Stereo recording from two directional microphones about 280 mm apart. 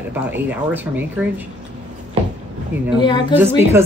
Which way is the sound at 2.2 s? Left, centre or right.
Centre.